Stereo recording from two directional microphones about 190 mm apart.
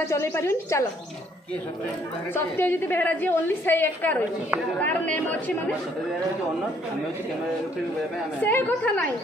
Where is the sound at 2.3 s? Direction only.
10° left (ahead or behind).